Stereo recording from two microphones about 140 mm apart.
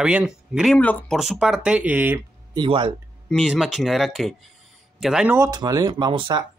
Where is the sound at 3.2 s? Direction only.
Centre (ahead or behind).